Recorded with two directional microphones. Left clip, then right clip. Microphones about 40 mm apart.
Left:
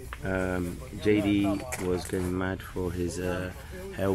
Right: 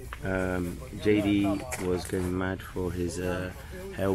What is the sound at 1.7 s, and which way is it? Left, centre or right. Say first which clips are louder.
Speech: even; centre.